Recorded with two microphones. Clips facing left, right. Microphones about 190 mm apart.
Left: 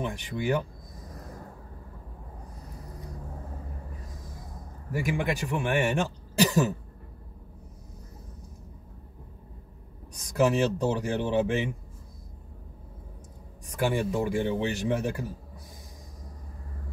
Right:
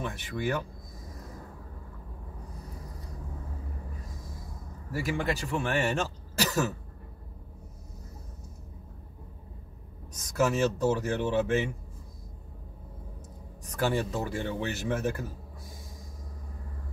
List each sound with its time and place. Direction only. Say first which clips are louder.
0.0 s speech: left 2 dB; 15° left (ahead or behind)
4.9 s speech: left 2 dB; 15° left (ahead or behind)
10.3 s speech: left 2 dB; 15° left (ahead or behind)
13.7 s speech: left 2 dB; 15° left (ahead or behind)